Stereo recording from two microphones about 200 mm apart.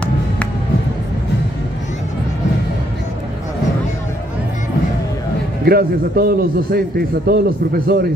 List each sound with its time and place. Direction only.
5.7 s a man's voice: 50° right (ahead or behind)